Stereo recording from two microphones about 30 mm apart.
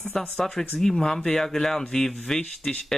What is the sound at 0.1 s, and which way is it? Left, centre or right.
Speech, centre.